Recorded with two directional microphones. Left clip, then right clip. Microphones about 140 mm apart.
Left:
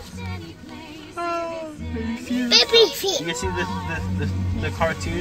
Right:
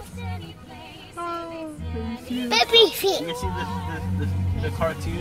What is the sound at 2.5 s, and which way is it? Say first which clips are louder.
Speech: left 1 dB; 65° right (ahead or behind).